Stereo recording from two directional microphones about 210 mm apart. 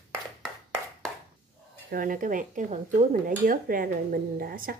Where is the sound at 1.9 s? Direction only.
40° right (ahead or behind).